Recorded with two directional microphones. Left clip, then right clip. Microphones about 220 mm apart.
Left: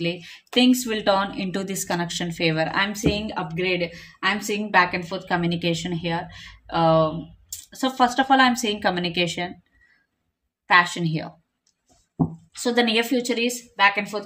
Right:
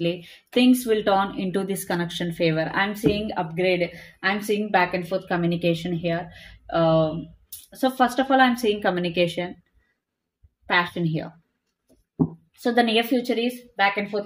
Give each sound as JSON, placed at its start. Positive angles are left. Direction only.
{"t": 0.0, "sound": "speech", "side_deg": 25}
{"t": 10.7, "sound": "speech", "side_deg": 25}
{"t": 12.6, "sound": "speech", "side_deg": 25}